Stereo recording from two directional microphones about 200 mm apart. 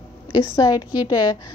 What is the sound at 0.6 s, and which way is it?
Speech, 20° left (ahead or behind).